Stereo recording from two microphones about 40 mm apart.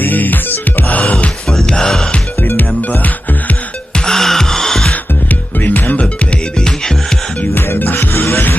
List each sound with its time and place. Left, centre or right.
0.0 s music: left
1.5 s music: centre
4.0 s music: centre
5.6 s music: left
7.5 s music: left